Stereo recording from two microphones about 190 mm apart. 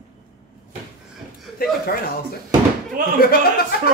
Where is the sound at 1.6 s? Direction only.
50° left (ahead or behind).